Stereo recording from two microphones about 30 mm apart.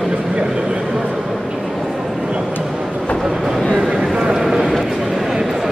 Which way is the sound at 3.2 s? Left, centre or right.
Centre.